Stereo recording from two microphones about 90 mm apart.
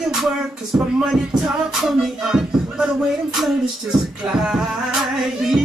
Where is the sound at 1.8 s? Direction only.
5° right (ahead or behind).